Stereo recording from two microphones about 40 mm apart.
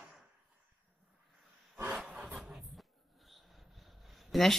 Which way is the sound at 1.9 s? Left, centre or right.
Centre.